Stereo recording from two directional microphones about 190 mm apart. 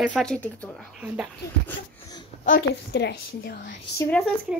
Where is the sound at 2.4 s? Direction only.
50° left (ahead or behind).